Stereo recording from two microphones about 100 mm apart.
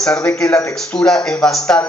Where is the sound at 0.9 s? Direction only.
5° left (ahead or behind).